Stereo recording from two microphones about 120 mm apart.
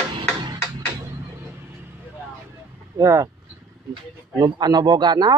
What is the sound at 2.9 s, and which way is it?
Speech, 25° right (ahead or behind).